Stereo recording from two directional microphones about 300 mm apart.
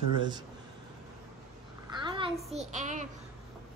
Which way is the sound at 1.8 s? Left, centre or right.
Centre.